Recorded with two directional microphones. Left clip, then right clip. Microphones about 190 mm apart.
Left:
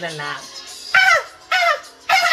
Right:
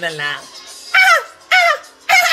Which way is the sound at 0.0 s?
20° right (ahead or behind).